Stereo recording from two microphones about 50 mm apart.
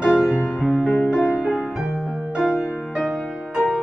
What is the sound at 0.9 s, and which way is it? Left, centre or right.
Music, left.